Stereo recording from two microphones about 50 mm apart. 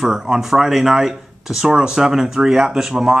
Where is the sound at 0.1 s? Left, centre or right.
Centre.